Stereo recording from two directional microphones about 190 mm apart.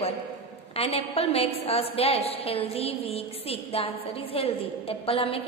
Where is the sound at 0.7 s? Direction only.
30° left (ahead or behind).